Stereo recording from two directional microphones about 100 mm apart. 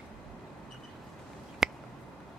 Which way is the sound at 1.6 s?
5° right (ahead or behind).